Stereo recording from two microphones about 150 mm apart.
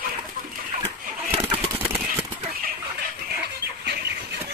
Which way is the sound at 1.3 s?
45° right (ahead or behind).